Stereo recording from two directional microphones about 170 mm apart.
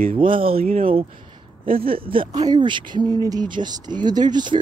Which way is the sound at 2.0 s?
25° right (ahead or behind).